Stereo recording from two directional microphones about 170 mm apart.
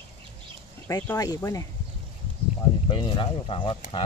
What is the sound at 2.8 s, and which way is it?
Speech, 30° left (ahead or behind).